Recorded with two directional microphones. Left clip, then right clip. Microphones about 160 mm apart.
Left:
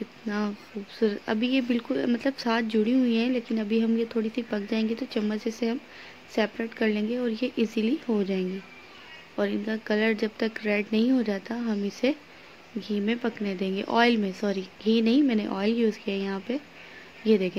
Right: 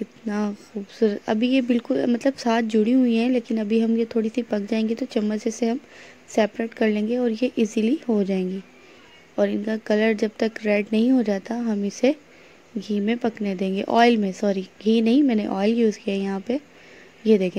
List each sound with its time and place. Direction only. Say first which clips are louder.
0.9 s speech: right 5 dB; 45° right (ahead or behind)